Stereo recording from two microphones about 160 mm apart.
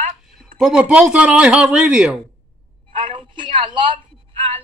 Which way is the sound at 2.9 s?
35° right (ahead or behind).